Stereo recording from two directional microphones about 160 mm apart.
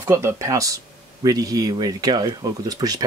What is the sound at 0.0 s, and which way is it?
Speech, 20° right (ahead or behind).